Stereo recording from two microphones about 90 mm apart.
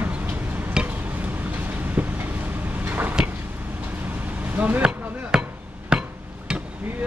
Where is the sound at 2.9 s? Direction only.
20° right (ahead or behind).